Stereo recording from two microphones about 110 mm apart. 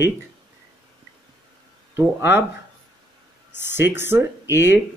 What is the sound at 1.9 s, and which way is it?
Speech, 20° right (ahead or behind).